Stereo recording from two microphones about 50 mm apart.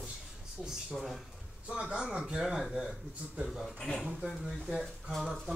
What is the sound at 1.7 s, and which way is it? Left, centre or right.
Speech, centre.